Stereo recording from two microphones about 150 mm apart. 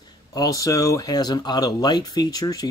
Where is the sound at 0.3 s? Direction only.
25° left (ahead or behind).